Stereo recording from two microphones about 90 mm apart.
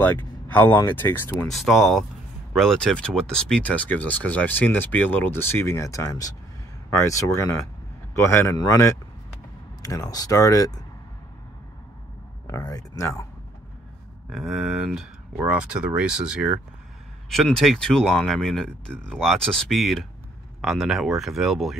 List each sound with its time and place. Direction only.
0.0 s speech: 20° left (ahead or behind)
1.5 s speech: 5° right (ahead or behind); by 8.5 s 30° left (ahead or behind)
9.8 s speech: 40° left (ahead or behind)
12.4 s speech: 40° left (ahead or behind)
14.3 s speech: centre (ahead or behind)
17.5 s speech: 5° left (ahead or behind)